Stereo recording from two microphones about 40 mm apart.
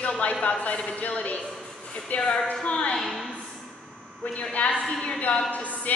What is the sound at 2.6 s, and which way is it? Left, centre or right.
Speech, left.